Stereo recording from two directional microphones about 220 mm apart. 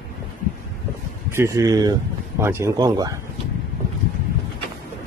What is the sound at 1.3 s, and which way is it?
Speech, 15° right (ahead or behind).